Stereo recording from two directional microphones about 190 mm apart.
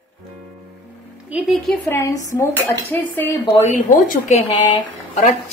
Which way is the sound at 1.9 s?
15° left (ahead or behind).